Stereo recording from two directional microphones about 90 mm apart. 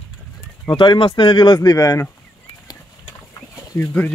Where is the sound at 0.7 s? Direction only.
65° left (ahead or behind); by 2.0 s 45° left (ahead or behind).